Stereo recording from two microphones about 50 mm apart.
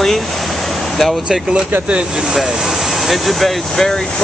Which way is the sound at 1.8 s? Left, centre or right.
Centre.